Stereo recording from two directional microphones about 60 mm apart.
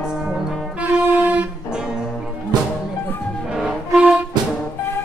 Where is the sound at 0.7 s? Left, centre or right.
Right.